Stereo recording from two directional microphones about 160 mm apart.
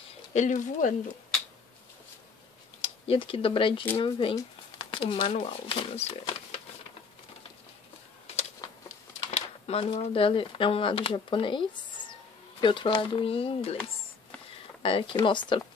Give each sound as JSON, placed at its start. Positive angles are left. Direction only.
{"t": 0.3, "sound": "speech", "side_deg": 50}
{"t": 2.8, "sound": "speech", "side_deg": 35}
{"t": 9.7, "sound": "speech", "side_deg": 40}
{"t": 14.8, "sound": "speech", "side_deg": 35}